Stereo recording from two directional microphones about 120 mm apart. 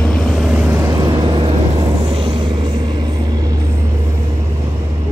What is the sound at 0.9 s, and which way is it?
Vehicle, 40° right (ahead or behind).